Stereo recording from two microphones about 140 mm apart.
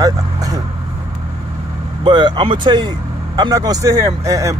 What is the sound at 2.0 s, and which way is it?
A man's voice, 35° right (ahead or behind).